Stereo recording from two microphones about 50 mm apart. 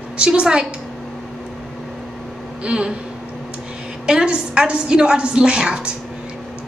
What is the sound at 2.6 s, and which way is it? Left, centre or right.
Speech, right.